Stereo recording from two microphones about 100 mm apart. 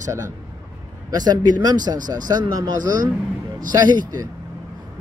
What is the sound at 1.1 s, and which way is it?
Speech, 40° right (ahead or behind).